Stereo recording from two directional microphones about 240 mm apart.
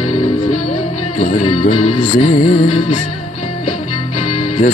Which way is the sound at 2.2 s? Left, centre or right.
Left.